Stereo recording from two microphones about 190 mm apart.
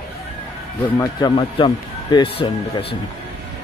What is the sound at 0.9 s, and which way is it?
Speech, 25° left (ahead or behind).